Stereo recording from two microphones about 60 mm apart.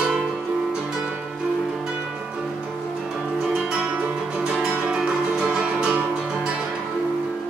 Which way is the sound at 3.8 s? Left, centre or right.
Centre.